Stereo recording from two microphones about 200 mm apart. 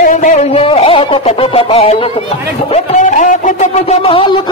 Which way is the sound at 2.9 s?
35° left (ahead or behind).